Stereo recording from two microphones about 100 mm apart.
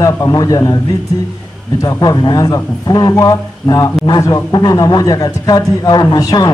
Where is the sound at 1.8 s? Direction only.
40° left (ahead or behind).